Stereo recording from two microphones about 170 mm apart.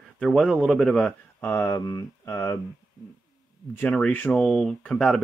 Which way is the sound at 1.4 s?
15° left (ahead or behind).